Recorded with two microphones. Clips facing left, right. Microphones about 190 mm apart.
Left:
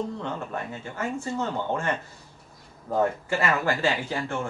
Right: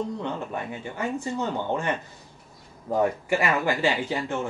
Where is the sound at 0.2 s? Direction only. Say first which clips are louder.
Right 1 dB; 15° right (ahead or behind).